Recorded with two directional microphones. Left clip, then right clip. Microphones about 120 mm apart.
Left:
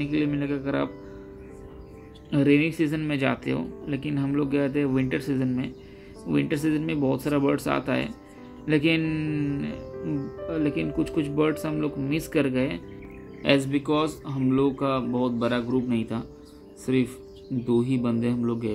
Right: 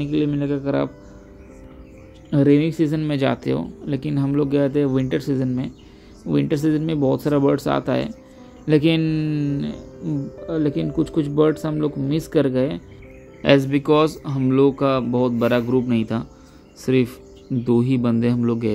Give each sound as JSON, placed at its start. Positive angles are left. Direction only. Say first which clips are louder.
{"t": 0.0, "sound": "speech", "louder": "right 4 dB", "side_deg": -40}
{"t": 2.3, "sound": "speech", "louder": "right 5 dB", "side_deg": -45}
{"t": 9.0, "sound": "speech", "louder": "right 5 dB", "side_deg": -30}
{"t": 13.4, "sound": "speech", "louder": "right 6 dB", "side_deg": -60}
{"t": 17.6, "sound": "speech", "louder": "right 5 dB", "side_deg": -65}